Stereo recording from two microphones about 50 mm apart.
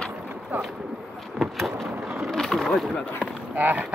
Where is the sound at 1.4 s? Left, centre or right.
Centre.